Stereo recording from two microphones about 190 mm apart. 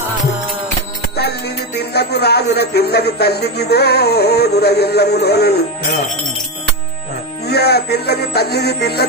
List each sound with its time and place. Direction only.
1.8 s a man's voice: 60° left (ahead or behind)
7.4 s a man's voice: 55° left (ahead or behind)